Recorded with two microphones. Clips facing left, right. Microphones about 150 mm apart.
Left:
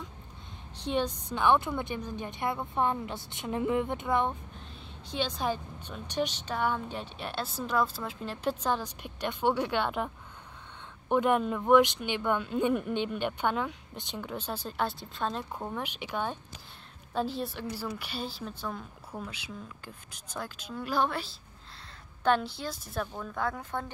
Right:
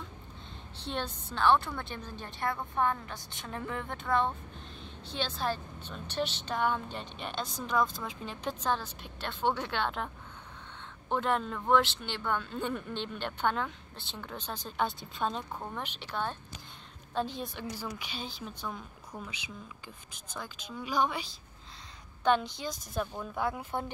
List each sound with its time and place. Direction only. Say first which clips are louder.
0.8 s a woman's voice: left 6 dB; 10° left (ahead or behind)
23.1 s speech: even; 10° right (ahead or behind)